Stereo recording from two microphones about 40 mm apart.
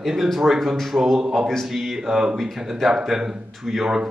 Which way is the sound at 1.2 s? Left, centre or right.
Centre.